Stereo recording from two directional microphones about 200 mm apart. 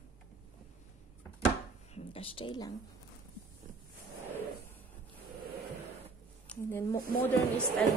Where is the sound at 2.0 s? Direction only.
30° left (ahead or behind).